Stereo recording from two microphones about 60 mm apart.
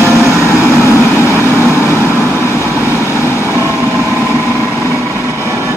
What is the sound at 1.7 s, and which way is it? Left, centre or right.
Vehicle, left.